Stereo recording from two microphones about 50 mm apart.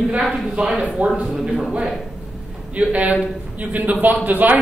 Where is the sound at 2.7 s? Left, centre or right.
Right.